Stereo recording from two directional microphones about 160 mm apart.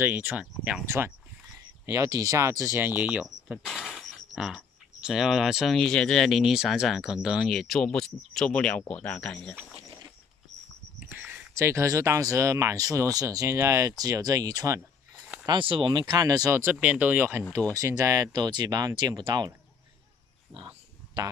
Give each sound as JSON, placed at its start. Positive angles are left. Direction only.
{"t": 0.0, "sound": "speech", "side_deg": -10}
{"t": 11.0, "sound": "speech", "side_deg": -10}
{"t": 16.7, "sound": "speech", "side_deg": -5}
{"t": 20.5, "sound": "a sound", "side_deg": -35}